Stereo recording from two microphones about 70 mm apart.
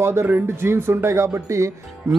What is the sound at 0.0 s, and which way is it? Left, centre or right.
Speech, right.